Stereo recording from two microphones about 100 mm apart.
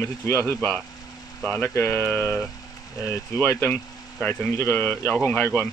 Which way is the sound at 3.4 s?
20° left (ahead or behind).